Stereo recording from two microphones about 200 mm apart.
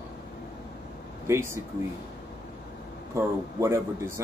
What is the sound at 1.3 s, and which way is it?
Speech, 10° right (ahead or behind).